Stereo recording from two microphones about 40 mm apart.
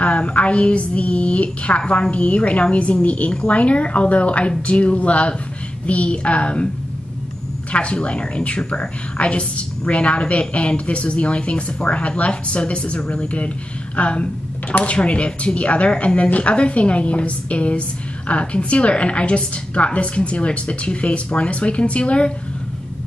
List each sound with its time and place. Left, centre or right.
0.0 s a woman's voice: left
3.3 s a woman's voice: left
7.7 s a woman's voice: left